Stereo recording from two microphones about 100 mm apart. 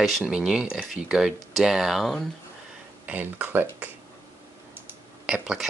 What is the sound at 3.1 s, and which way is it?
Speech, 15° right (ahead or behind).